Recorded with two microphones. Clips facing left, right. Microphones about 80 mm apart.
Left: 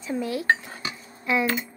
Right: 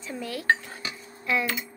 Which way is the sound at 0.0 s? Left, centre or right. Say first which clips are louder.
Left 6 dB; centre.